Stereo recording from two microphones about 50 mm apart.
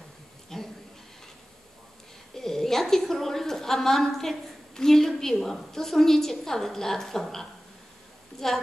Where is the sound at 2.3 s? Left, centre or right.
Centre.